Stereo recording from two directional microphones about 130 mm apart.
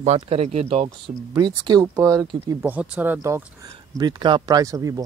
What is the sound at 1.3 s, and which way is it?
Speech, 30° right (ahead or behind).